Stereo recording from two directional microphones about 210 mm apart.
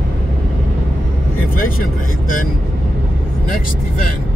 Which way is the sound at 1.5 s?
40° left (ahead or behind).